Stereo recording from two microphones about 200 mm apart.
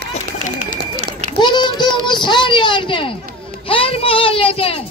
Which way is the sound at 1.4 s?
20° left (ahead or behind).